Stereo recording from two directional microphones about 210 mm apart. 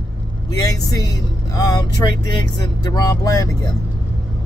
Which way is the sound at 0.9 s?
15° left (ahead or behind).